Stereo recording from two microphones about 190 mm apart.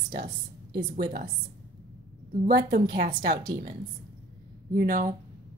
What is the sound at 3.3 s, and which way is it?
Speech, 25° right (ahead or behind).